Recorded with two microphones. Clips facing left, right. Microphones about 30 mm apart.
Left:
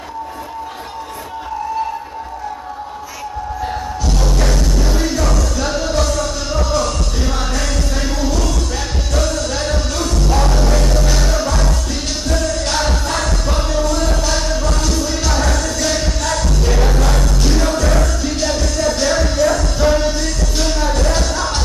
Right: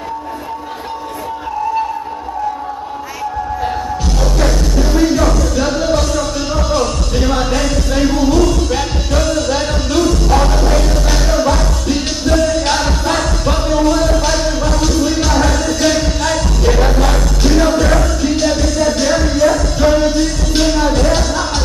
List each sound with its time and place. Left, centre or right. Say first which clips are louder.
4.9 s music: right 8 dB; centre
20.6 s music: right 5 dB; centre